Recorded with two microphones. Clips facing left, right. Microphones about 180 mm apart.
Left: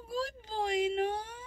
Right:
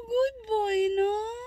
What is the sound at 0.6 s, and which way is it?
Speech, 25° right (ahead or behind).